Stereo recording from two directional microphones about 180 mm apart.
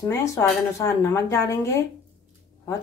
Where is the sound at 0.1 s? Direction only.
15° left (ahead or behind).